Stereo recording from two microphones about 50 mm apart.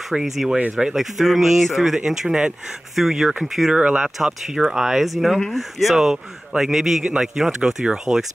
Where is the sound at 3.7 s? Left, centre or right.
Centre.